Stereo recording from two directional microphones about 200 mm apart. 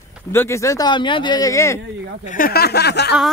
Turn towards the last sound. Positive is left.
turn(degrees=55)  # may be behind; listen again after turning